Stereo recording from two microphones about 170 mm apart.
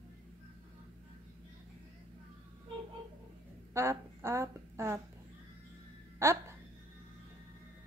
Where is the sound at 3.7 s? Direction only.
15° right (ahead or behind).